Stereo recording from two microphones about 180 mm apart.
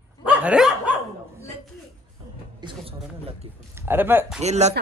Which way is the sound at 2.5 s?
30° right (ahead or behind).